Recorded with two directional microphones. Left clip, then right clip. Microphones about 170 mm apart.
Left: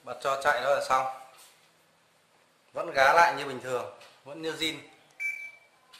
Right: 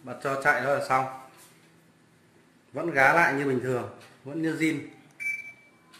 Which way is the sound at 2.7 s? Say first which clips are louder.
Right 1 dB; 5° left (ahead or behind).